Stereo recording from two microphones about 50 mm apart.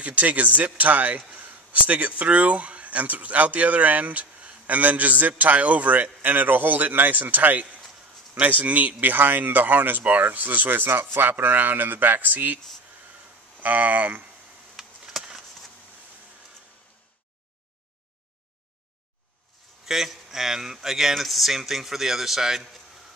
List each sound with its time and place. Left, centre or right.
0.0 s speech: right
13.6 s speech: right
14.8 s a sound: centre
19.9 s speech: centre